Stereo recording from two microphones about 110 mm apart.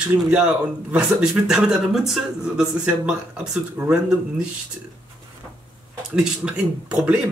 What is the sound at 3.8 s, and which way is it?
Speech, 25° right (ahead or behind).